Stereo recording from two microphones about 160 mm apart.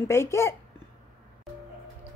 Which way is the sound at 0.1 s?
15° left (ahead or behind).